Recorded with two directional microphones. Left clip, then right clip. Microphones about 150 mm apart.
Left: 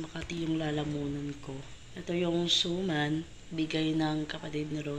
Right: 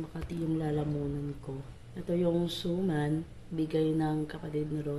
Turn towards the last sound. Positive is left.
turn(degrees=-10)  # may be behind; listen again after turning